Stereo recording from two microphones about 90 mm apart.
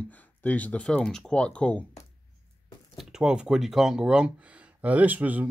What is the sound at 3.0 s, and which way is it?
Speech, 5° right (ahead or behind).